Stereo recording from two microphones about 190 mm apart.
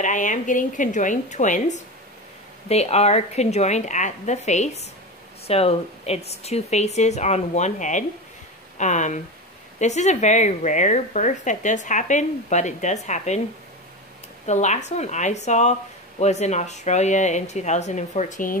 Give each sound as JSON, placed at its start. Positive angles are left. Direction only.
{"t": 0.0, "sound": "speech", "side_deg": 40}
{"t": 14.4, "sound": "speech", "side_deg": 35}